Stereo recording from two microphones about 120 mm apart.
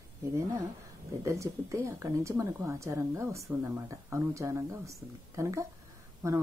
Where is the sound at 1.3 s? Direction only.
25° right (ahead or behind).